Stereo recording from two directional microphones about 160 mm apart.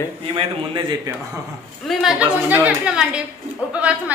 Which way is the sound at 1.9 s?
5° right (ahead or behind).